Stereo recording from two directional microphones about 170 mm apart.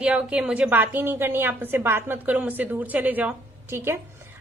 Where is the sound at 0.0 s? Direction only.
5° right (ahead or behind).